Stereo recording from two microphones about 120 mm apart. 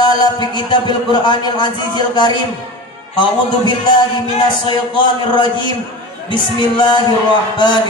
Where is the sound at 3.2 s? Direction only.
40° left (ahead or behind).